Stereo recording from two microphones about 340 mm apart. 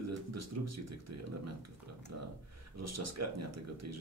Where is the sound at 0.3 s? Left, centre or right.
Right.